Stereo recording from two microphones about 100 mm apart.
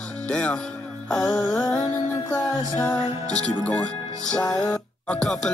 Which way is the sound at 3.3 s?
10° left (ahead or behind).